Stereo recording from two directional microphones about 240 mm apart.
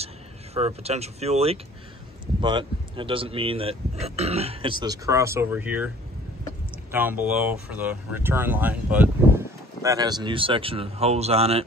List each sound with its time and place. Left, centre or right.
0.6 s speech: right; by 5.9 s centre
6.9 s speech: centre; by 11.6 s right